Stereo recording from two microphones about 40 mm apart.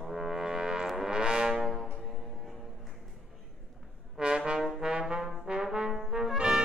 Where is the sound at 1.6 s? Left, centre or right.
Centre.